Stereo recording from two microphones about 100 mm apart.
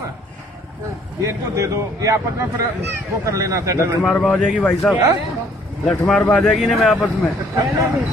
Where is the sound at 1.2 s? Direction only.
30° right (ahead or behind).